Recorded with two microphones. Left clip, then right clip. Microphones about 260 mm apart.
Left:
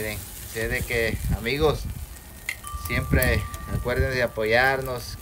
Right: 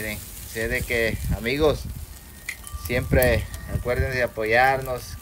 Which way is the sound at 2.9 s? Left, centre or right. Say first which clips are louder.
Right 4 dB; centre.